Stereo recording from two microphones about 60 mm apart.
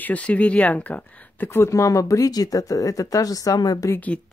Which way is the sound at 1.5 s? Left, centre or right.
Left.